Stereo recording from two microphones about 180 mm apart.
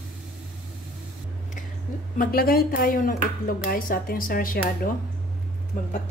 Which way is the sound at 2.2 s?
55° left (ahead or behind).